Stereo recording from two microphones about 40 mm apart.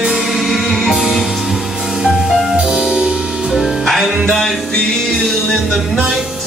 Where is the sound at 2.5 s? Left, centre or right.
Centre.